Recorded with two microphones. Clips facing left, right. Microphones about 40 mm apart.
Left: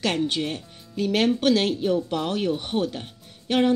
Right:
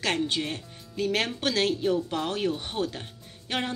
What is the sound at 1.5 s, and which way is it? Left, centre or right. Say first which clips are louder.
Speech: left 2 dB; left.